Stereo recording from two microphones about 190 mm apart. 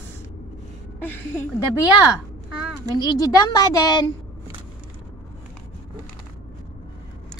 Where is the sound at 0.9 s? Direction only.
10° left (ahead or behind).